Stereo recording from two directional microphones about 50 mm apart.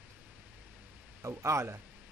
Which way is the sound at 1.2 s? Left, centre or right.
Right.